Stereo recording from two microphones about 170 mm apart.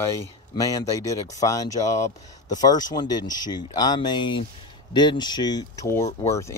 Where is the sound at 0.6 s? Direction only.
20° left (ahead or behind).